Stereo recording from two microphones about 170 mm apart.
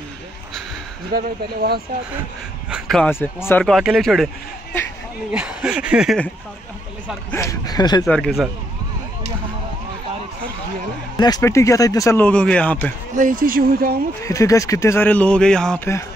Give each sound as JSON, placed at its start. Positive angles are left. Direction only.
{"t": 1.1, "sound": "speech", "side_deg": -60}
{"t": 2.7, "sound": "speech", "side_deg": 0}
{"t": 3.1, "sound": "speech", "side_deg": 15}
{"t": 3.6, "sound": "speech", "side_deg": 0}
{"t": 5.3, "sound": "speech", "side_deg": -5}
{"t": 7.2, "sound": "speech", "side_deg": 15}
{"t": 8.0, "sound": "speech", "side_deg": 5}
{"t": 11.1, "sound": "speech", "side_deg": 25}
{"t": 12.3, "sound": "speech", "side_deg": 5}
{"t": 13.1, "sound": "speech", "side_deg": -50}
{"t": 14.2, "sound": "speech", "side_deg": 20}